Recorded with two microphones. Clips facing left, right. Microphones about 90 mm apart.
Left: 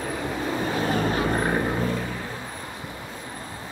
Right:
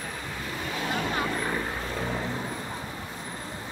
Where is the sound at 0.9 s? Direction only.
45° left (ahead or behind).